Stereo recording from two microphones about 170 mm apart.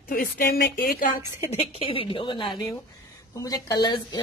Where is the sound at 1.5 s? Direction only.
35° left (ahead or behind).